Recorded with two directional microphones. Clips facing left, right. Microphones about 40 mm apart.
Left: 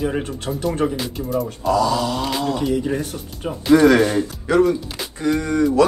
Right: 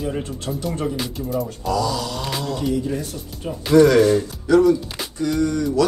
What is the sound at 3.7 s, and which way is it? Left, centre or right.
Speech, left.